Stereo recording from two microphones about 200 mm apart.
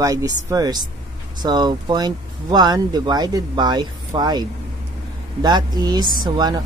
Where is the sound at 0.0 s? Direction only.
15° right (ahead or behind).